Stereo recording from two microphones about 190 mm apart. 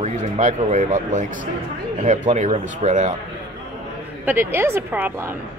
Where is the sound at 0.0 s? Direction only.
40° right (ahead or behind).